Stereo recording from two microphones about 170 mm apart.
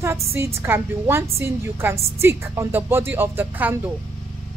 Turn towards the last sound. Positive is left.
turn(degrees=-10)  # may be behind; listen again after turning